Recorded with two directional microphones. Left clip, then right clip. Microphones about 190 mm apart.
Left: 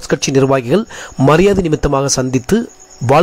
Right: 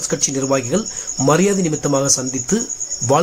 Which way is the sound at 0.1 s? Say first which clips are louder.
Left 7 dB; 40° left (ahead or behind).